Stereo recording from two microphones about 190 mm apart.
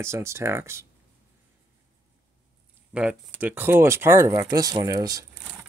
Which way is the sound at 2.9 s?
5° right (ahead or behind).